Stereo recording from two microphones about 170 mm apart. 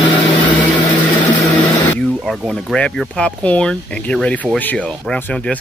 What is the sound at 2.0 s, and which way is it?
Speech, centre (ahead or behind).